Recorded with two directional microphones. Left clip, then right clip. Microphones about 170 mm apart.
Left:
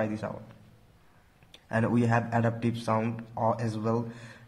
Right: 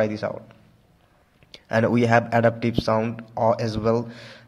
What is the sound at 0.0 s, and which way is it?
Speech, 30° right (ahead or behind).